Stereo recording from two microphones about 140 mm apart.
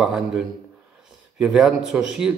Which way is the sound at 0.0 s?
5° right (ahead or behind).